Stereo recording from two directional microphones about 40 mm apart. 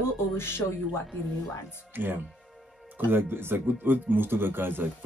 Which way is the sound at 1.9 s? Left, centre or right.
Right.